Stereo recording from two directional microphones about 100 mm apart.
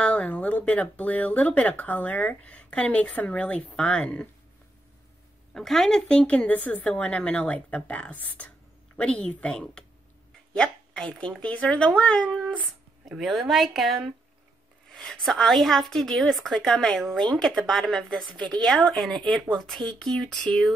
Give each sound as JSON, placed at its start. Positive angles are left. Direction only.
{"t": 0.0, "sound": "speech", "side_deg": 10}
{"t": 5.5, "sound": "speech", "side_deg": 5}